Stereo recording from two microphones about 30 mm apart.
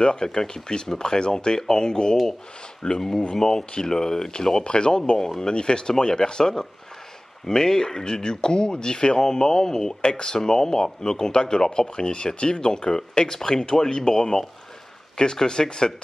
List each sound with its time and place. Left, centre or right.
0.0 s speech: left
3.0 s speech: centre
4.6 s speech: left